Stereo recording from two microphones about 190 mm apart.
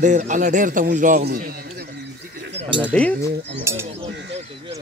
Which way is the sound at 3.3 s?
65° right (ahead or behind).